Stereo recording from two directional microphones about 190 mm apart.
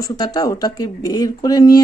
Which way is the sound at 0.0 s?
20° left (ahead or behind).